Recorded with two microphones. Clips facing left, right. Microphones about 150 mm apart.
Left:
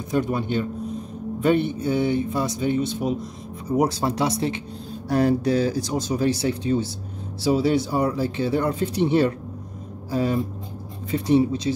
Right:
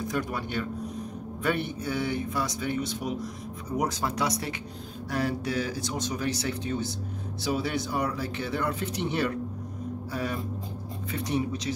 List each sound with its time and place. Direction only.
0.1 s speech: 25° left (ahead or behind)